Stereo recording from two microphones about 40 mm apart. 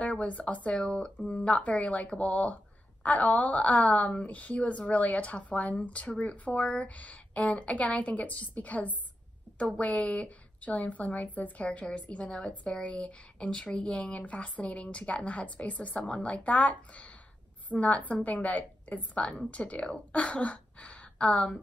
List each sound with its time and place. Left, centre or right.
0.0 s a woman's voice: left
1.3 s a woman's voice: left
12.7 s a woman's voice: left